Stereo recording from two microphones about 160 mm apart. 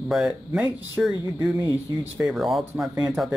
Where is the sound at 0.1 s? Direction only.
Centre (ahead or behind).